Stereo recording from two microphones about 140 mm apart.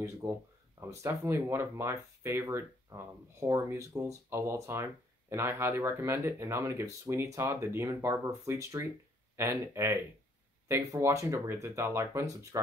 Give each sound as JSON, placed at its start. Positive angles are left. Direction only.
{"t": 0.0, "sound": "speech", "side_deg": -20}